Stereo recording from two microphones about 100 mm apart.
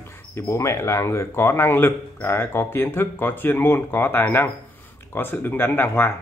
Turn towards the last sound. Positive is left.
turn(degrees=20)  # may be behind; listen again after turning